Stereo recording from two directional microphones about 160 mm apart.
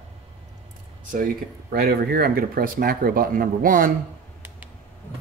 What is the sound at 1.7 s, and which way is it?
Speech, 75° right (ahead or behind).